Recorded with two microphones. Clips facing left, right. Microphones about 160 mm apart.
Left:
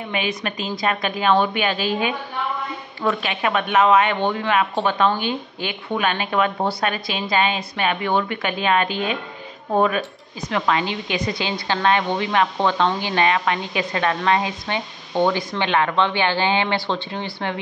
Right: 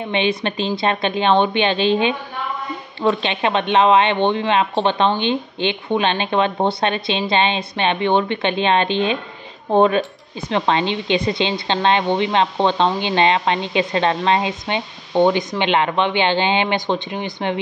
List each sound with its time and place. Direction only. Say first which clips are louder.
0.1 s speech: right 6 dB; 25° right (ahead or behind)